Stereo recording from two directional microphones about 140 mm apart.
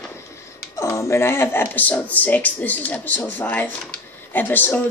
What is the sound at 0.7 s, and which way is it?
Speech, 20° left (ahead or behind).